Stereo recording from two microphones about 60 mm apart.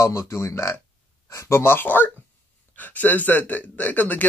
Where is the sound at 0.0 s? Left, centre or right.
Left.